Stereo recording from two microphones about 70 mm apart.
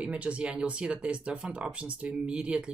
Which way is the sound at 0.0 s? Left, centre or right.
Centre.